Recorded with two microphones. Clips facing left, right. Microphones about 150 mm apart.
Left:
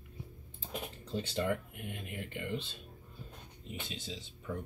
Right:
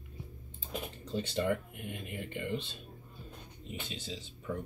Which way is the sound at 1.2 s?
5° left (ahead or behind).